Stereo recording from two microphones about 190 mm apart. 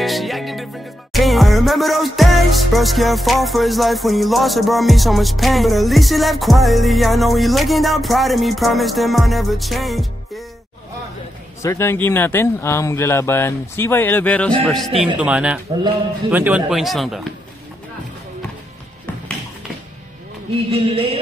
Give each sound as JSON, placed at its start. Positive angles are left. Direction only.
{"t": 0.0, "sound": "music", "side_deg": 0}
{"t": 11.6, "sound": "speech", "side_deg": 15}
{"t": 14.9, "sound": "music", "side_deg": -30}
{"t": 15.1, "sound": "speech", "side_deg": -5}
{"t": 16.3, "sound": "music", "side_deg": -10}
{"t": 20.7, "sound": "music", "side_deg": -30}